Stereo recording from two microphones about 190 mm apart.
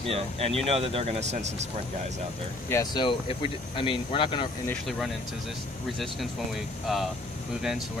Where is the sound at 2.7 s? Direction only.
20° left (ahead or behind).